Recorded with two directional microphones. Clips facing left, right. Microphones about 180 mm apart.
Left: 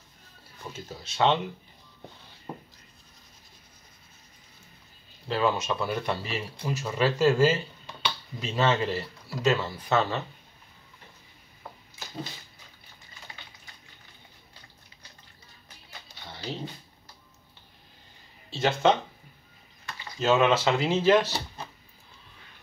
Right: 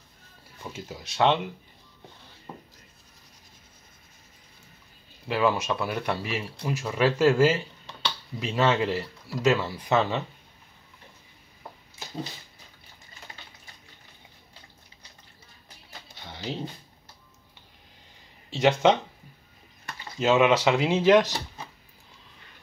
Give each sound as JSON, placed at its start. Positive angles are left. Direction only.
{"t": 0.7, "sound": "speech", "side_deg": -10}
{"t": 5.3, "sound": "speech", "side_deg": -10}
{"t": 18.5, "sound": "speech", "side_deg": -15}
{"t": 20.2, "sound": "speech", "side_deg": -15}